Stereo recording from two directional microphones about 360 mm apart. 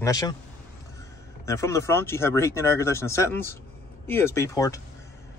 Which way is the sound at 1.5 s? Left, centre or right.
Centre.